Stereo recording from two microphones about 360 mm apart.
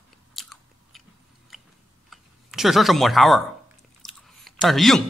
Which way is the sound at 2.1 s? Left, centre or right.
Centre.